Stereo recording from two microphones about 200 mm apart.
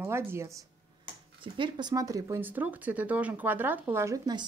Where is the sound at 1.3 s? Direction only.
25° right (ahead or behind).